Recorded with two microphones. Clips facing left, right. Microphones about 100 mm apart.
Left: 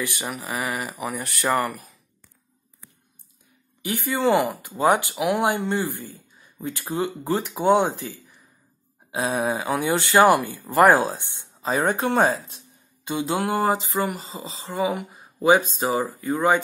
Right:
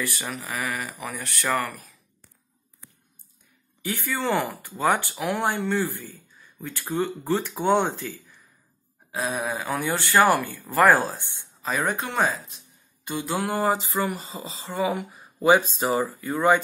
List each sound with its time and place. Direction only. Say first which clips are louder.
0.0 s speech: left 2 dB; 20° left (ahead or behind)
3.8 s speech: left 5 dB; 15° left (ahead or behind)
9.1 s speech: left 4 dB; 25° left (ahead or behind)
11.7 s speech: left 5 dB; 35° left (ahead or behind)
13.1 s speech: left 3 dB; 20° left (ahead or behind)